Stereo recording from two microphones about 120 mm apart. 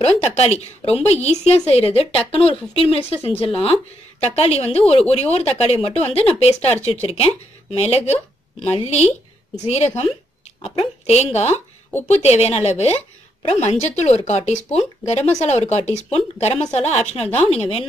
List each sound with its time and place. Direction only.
0.0 s a woman's voice: 65° left (ahead or behind)